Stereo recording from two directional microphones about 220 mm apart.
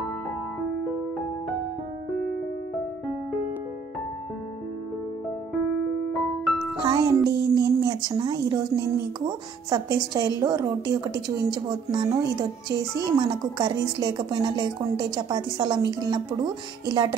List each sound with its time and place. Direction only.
6.8 s a woman's voice: 15° right (ahead or behind)